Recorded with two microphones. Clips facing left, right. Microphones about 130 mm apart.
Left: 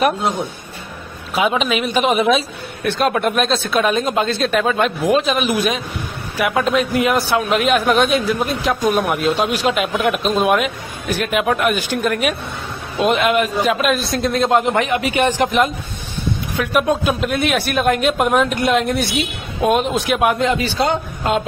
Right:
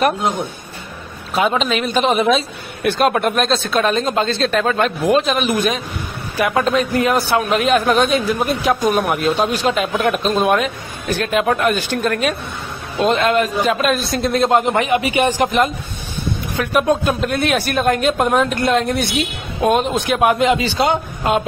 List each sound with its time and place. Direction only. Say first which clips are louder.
1.3 s a man's voice: even; 5° left (ahead or behind)
16.5 s a man's voice: right 1 dB; centre (ahead or behind)
20.3 s a man's voice: right 2 dB; 15° right (ahead or behind)